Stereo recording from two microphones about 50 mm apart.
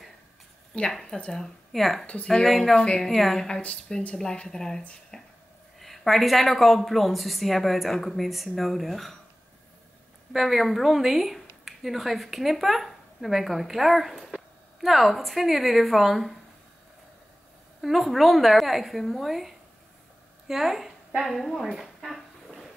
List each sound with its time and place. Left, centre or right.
0.7 s speech: left
1.4 s speech: centre
2.0 s speech: left
2.4 s speech: centre
2.8 s speech: centre
3.2 s speech: centre
3.4 s speech: centre
5.1 s a sound: centre
5.8 s speech: centre
10.3 s speech: centre
17.8 s a woman's voice: centre
21.8 s a sound: centre